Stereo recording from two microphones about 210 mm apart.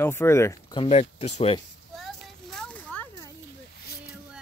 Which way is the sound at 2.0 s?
Centre (ahead or behind).